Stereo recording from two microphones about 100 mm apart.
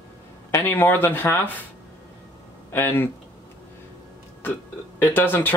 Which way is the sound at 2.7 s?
20° left (ahead or behind).